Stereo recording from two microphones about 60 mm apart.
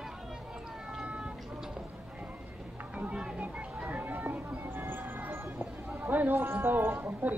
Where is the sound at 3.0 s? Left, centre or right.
Centre.